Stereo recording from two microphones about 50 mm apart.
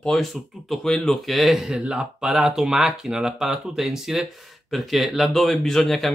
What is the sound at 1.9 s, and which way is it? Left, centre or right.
Speech, centre.